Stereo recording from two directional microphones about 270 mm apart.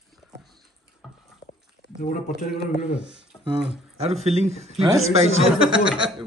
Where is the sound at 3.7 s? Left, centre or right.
Right.